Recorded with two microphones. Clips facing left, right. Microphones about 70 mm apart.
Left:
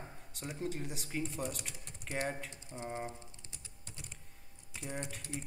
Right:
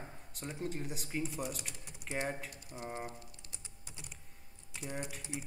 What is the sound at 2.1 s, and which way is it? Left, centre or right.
Speech, centre.